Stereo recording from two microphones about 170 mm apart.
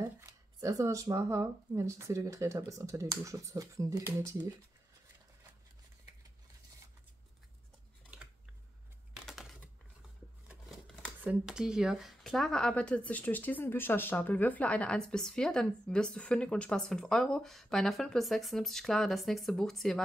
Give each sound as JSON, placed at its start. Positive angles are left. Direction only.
{"t": 0.3, "sound": "speech", "side_deg": -20}
{"t": 9.2, "sound": "typing", "side_deg": 0}
{"t": 11.2, "sound": "speech", "side_deg": -5}